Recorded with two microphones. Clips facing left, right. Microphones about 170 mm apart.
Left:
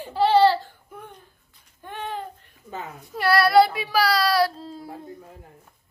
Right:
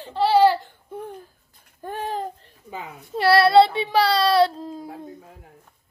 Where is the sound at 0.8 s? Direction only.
30° right (ahead or behind).